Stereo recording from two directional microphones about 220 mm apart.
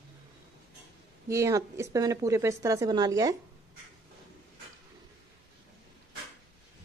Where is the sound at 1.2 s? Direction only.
15° right (ahead or behind).